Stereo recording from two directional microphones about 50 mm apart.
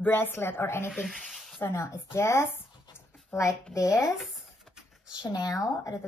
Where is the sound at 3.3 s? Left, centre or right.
Left.